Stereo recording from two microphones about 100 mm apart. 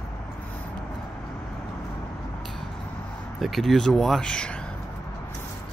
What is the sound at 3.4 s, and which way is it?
Speech, centre (ahead or behind).